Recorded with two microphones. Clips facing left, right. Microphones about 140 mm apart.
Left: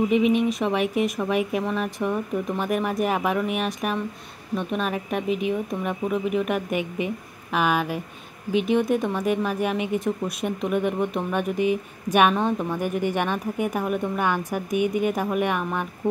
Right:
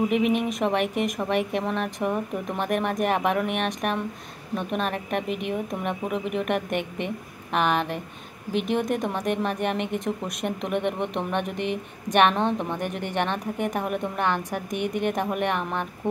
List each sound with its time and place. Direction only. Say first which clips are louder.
0.1 s a woman's voice: left 3 dB; centre (ahead or behind)